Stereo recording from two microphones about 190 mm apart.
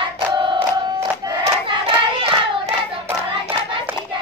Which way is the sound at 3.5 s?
25° right (ahead or behind).